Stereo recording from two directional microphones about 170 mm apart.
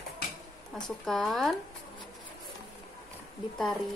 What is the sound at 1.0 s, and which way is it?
Speech, centre (ahead or behind).